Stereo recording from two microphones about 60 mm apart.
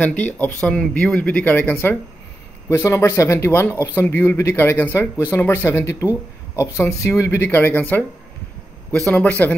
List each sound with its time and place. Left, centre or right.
0.0 s speech: left
0.6 s speech: centre
1.2 s speech: left
2.7 s speech: left
7.4 s speech: left
8.9 s speech: centre
9.2 s speech: left